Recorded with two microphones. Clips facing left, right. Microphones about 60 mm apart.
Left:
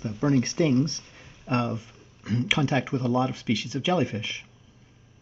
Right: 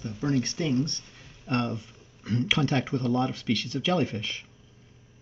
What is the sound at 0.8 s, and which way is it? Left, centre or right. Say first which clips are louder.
Speech: left 3 dB; centre.